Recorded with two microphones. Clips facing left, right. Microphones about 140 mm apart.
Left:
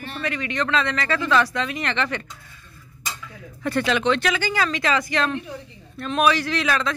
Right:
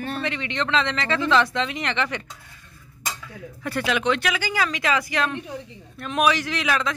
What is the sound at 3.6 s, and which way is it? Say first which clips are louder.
Speech: left 2 dB; 10° right (ahead or behind).